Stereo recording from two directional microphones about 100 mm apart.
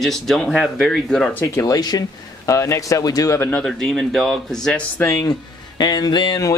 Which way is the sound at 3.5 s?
5° left (ahead or behind).